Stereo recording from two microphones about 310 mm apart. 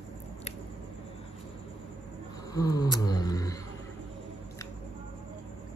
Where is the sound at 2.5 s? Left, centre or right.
Centre.